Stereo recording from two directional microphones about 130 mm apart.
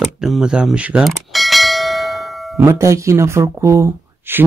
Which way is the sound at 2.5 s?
20° right (ahead or behind).